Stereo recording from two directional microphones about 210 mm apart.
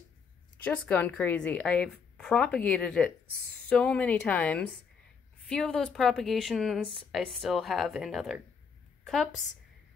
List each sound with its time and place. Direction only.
0.7 s a woman's voice: 5° left (ahead or behind)
9.0 s a sound: centre (ahead or behind)
9.3 s a woman's voice: 35° left (ahead or behind)